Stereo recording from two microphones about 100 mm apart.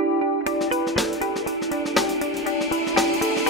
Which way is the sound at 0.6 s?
Centre (ahead or behind).